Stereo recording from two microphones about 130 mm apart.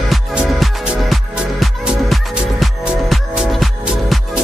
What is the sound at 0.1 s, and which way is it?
Music, 5° right (ahead or behind).